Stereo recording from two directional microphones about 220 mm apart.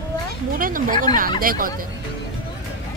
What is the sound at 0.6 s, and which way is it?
Speech, 40° right (ahead or behind).